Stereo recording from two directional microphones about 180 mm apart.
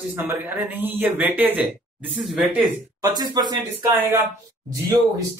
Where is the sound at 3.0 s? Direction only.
20° right (ahead or behind).